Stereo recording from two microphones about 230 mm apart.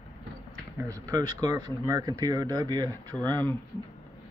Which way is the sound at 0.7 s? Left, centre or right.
Centre.